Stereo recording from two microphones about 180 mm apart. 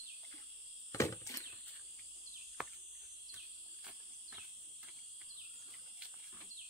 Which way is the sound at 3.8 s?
5° right (ahead or behind).